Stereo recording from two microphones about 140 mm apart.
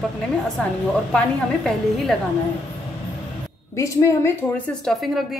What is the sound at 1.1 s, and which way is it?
A woman's voice, 5° left (ahead or behind).